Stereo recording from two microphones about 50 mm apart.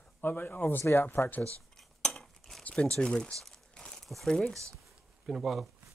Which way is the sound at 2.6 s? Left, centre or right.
Left.